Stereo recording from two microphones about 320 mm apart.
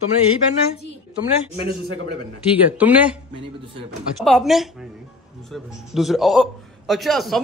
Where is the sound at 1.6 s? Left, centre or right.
Centre.